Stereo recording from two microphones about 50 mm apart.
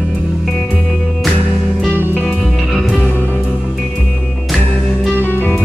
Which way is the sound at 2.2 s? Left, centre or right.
Centre.